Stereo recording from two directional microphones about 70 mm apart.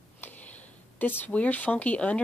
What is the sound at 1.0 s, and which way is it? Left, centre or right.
Speech, left.